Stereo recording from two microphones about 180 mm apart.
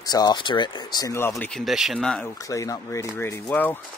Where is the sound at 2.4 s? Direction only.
20° left (ahead or behind).